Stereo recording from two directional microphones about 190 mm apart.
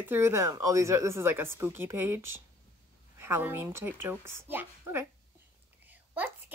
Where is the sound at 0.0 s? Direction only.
10° right (ahead or behind).